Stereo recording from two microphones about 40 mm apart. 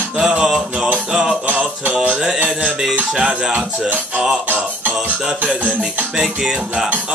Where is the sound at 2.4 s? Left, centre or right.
Centre.